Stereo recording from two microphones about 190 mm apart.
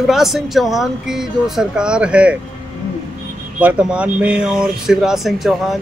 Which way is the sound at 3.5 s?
5° right (ahead or behind).